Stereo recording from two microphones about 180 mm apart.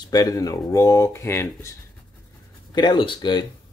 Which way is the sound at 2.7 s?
25° left (ahead or behind).